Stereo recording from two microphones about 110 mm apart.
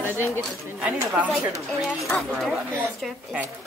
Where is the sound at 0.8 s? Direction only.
10° right (ahead or behind).